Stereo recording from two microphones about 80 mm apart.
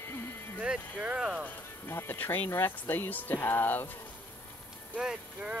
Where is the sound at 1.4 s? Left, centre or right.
Left.